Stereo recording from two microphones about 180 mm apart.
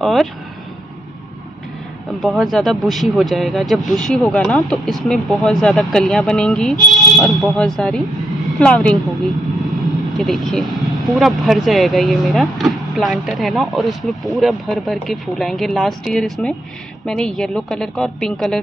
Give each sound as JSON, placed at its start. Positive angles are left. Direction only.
{"t": 0.0, "sound": "speech", "side_deg": 0}
{"t": 2.2, "sound": "speech", "side_deg": 0}
{"t": 10.1, "sound": "speech", "side_deg": 0}